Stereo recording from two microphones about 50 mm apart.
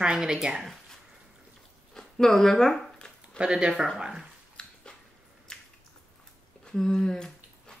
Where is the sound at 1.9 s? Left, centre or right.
Centre.